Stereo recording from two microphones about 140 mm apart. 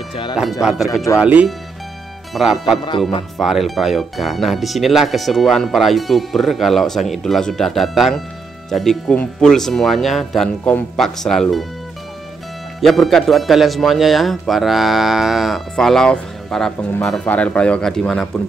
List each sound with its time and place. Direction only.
0.1 s speech: 35° left (ahead or behind)
0.4 s speech: 5° right (ahead or behind)
12.8 s speech: centre (ahead or behind)